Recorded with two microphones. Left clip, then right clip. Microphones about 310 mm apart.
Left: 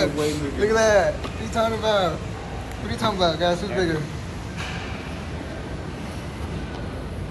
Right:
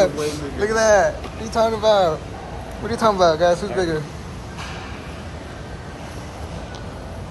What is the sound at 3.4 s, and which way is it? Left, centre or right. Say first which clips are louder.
Speech: right 5 dB; right.